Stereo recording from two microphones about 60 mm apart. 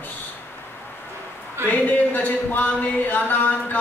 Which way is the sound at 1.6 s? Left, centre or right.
Left.